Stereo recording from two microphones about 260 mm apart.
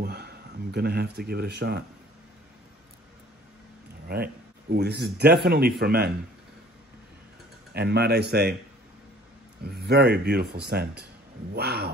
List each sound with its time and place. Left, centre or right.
0.0 s speech: right
4.1 s speech: right
7.7 s speech: right
9.6 s speech: right